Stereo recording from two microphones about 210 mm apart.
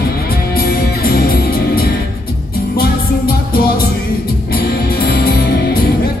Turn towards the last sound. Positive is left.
turn(degrees=45)  # may be behind; listen again after turning